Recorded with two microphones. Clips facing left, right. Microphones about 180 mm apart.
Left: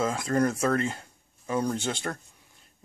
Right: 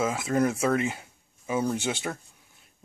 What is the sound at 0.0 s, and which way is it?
Speech, 5° right (ahead or behind).